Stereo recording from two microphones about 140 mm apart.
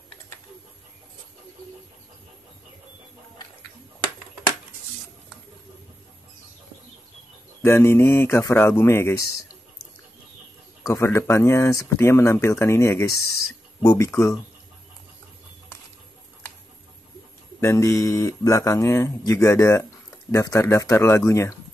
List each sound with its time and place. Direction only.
7.6 s speech: 15° left (ahead or behind)
10.9 s speech: 20° left (ahead or behind)
17.6 s speech: 20° left (ahead or behind)